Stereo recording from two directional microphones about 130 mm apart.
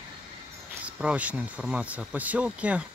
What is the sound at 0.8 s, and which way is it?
Speech, 10° right (ahead or behind).